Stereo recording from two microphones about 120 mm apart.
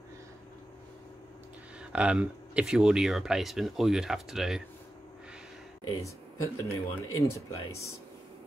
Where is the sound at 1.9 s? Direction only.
10° right (ahead or behind).